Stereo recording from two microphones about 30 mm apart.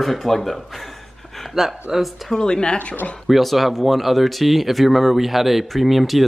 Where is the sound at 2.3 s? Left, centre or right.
Left.